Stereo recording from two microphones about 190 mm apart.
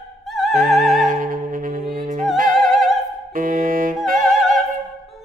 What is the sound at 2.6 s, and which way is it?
Opera, centre (ahead or behind).